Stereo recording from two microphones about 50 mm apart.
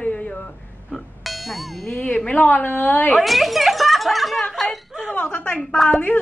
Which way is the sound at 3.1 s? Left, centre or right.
Centre.